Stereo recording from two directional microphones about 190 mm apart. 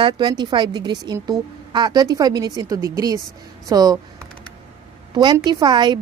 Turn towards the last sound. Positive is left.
turn(degrees=-25)  # may be behind; listen again after turning